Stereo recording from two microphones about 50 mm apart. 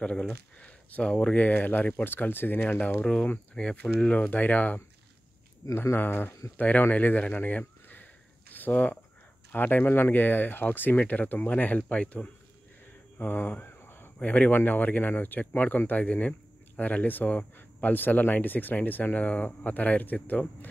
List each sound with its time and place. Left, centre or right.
0.0 s speech: centre
2.0 s speech: left
2.6 s speech: left
3.5 s speech: centre
5.9 s speech: left
13.2 s a sound: left
14.2 s speech: left